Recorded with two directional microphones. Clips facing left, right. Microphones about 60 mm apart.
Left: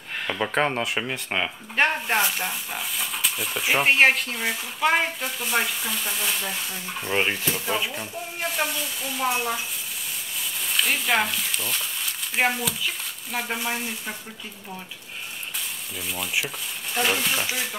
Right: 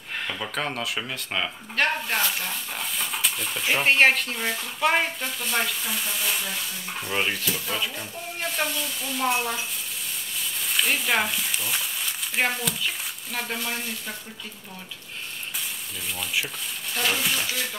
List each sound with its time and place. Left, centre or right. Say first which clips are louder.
0.4 s speech: left 9 dB; left; by 6.3 s centre
7.0 s speech: left 2 dB; centre
10.6 s speech: even; centre
16.3 s speech: left 1 dB; centre